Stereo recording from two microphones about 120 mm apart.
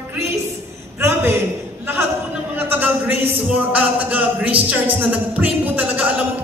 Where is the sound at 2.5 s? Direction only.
15° right (ahead or behind).